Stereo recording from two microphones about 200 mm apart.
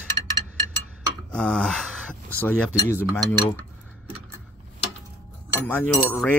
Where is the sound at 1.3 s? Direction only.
5° left (ahead or behind).